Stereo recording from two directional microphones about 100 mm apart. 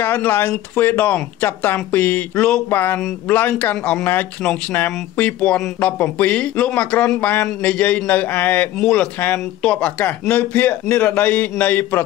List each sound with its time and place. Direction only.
0.0 s speech: 25° left (ahead or behind)
8.7 s speech: 10° left (ahead or behind)